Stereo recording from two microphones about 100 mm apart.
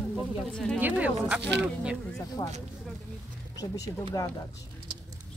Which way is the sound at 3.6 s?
40° left (ahead or behind).